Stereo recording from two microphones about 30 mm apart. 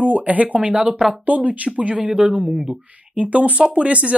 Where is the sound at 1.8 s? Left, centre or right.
Right.